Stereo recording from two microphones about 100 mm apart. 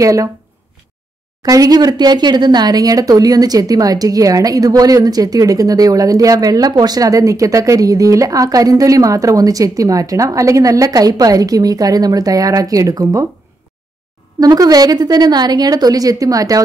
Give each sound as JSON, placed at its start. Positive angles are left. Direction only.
{"t": 0.0, "sound": "speech", "side_deg": -35}
{"t": 1.4, "sound": "speech", "side_deg": -35}
{"t": 14.4, "sound": "speech", "side_deg": -40}